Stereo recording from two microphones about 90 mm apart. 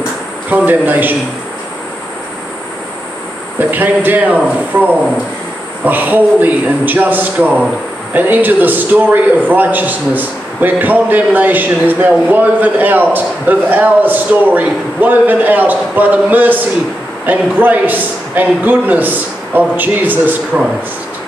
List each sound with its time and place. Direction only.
0.5 s a man's voice: 20° right (ahead or behind)
3.5 s a man's voice: 20° right (ahead or behind)